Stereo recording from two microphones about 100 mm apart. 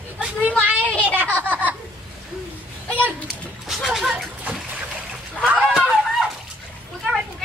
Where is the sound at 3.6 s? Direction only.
Centre (ahead or behind).